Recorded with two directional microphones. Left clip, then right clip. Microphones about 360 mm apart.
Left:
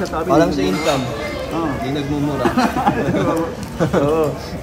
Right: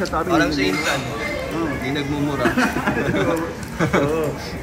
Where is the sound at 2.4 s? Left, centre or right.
Left.